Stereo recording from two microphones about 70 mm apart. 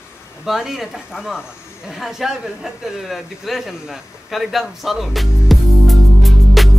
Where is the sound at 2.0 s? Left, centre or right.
Centre.